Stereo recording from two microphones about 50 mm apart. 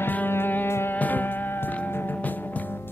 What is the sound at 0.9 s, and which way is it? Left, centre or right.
Music, left.